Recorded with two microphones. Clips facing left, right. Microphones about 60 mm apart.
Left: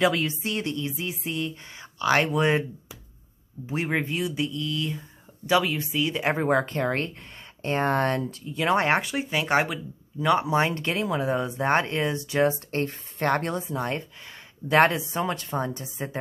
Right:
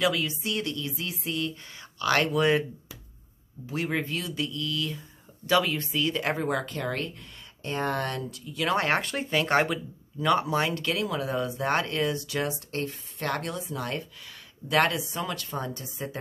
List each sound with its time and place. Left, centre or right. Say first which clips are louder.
0.0 s speech: left 3 dB; left
5.5 s speech: left 1 dB; centre
6.3 s speech: left 5 dB; left